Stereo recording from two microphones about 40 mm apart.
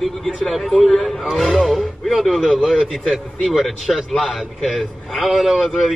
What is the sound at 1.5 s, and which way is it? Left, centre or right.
Speech, centre.